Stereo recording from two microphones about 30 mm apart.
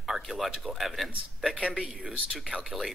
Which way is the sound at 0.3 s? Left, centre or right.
Centre.